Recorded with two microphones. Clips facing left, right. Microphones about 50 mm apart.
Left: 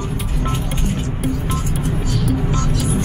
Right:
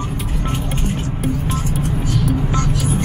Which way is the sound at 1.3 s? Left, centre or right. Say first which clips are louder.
Right 1 dB; right.